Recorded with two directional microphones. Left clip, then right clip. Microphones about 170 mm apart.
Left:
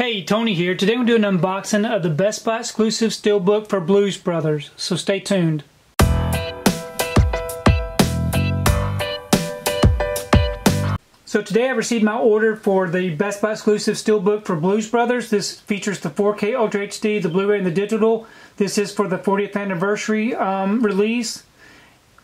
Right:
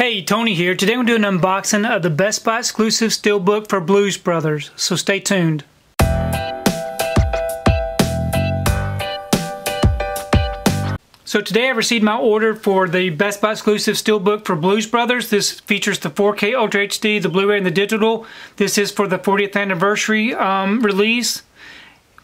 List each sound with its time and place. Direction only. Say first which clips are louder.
0.0 s speech: right 3 dB; 25° right (ahead or behind)
5.9 s music: right 2 dB; centre (ahead or behind)
11.3 s speech: right 2 dB; 25° right (ahead or behind)
16.0 s speech: right 3 dB; 40° right (ahead or behind)
16.3 s speech: right 3 dB; 25° right (ahead or behind)
17.8 s speech: right 1 dB; 40° right (ahead or behind)
18.9 s speech: right 3 dB; 25° right (ahead or behind)
19.2 s speech: right 4 dB; 40° right (ahead or behind)
19.6 s speech: right 5 dB; 25° right (ahead or behind)